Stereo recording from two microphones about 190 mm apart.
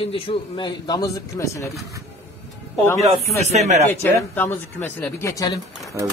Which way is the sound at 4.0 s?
10° left (ahead or behind).